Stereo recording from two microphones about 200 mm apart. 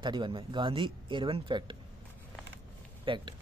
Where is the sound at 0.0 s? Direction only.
25° right (ahead or behind).